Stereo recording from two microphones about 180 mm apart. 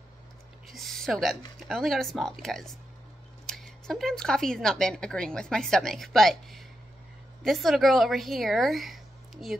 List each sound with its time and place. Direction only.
0.7 s a woman's voice: centre (ahead or behind)